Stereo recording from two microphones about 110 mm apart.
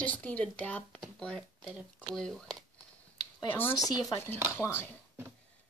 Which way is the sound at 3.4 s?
20° left (ahead or behind).